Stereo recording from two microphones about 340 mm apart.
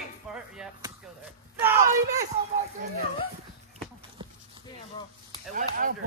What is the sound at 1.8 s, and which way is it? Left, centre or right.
Speech, right.